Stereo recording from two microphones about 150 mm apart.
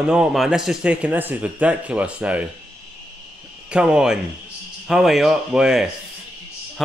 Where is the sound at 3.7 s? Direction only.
5° right (ahead or behind).